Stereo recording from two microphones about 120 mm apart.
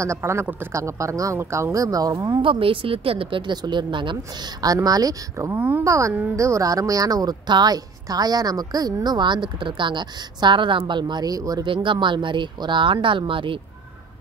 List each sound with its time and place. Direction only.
0.0 s a woman's voice: 25° right (ahead or behind)
2.4 s a woman's voice: 45° right (ahead or behind); by 5.6 s 30° right (ahead or behind)
5.6 s a woman's voice: 15° right (ahead or behind)
11.6 s speech: 45° right (ahead or behind)